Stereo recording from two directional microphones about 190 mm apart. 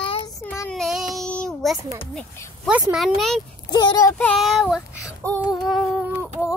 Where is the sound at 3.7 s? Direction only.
20° left (ahead or behind).